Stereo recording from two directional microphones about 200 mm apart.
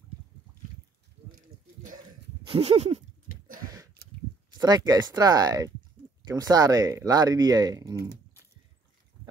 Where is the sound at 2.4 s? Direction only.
30° right (ahead or behind).